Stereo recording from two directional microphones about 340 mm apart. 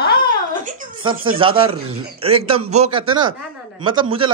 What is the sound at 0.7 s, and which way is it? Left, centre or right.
Music, centre.